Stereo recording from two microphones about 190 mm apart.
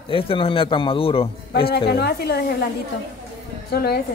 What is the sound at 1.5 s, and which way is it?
A woman's voice, 55° left (ahead or behind).